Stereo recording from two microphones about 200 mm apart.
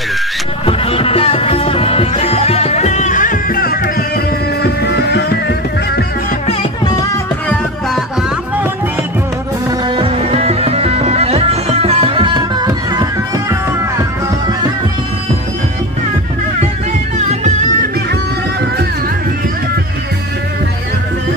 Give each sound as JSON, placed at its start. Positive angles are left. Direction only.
{"t": 0.7, "sound": "music", "side_deg": 30}
{"t": 9.8, "sound": "music", "side_deg": -25}